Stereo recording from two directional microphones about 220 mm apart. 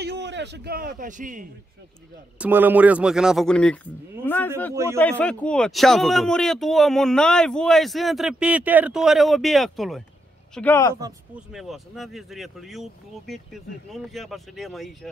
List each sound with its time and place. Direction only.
0.0 s a man's voice: 50° right (ahead or behind)
2.3 s a man's voice: 5° right (ahead or behind); by 11.0 s 10° left (ahead or behind)
11.5 s speech: centre (ahead or behind)